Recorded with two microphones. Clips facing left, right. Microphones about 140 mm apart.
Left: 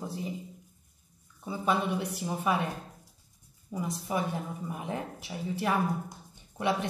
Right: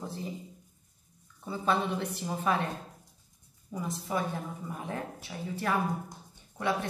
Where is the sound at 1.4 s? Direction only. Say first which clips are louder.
Even; 10° left (ahead or behind).